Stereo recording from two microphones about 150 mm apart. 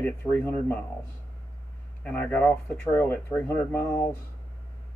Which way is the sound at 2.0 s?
15° left (ahead or behind).